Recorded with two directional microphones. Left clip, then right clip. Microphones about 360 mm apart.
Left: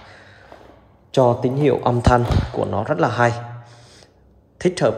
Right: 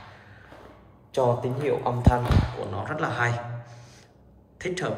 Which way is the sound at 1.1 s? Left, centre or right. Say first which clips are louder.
Left 7 dB; left.